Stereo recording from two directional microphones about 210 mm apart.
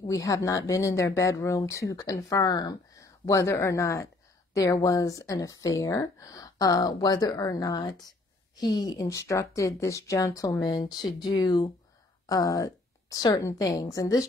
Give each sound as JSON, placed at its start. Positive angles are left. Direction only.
{"t": 0.0, "sound": "speech", "side_deg": 15}